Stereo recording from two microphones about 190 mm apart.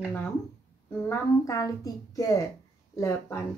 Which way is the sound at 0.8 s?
15° left (ahead or behind).